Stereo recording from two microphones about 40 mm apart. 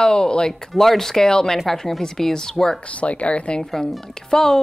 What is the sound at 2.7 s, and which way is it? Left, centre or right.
Speech, left.